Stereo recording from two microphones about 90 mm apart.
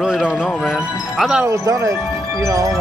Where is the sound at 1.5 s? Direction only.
40° right (ahead or behind).